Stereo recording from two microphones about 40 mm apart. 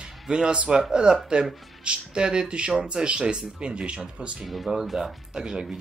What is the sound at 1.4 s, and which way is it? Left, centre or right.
Speech, right.